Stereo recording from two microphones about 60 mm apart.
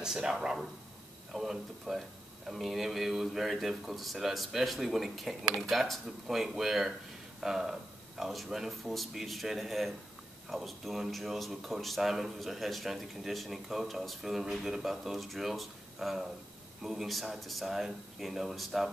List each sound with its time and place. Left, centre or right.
0.0 s speech: centre